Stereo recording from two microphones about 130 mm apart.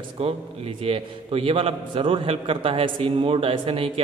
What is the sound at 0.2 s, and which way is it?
A man's voice, 50° right (ahead or behind).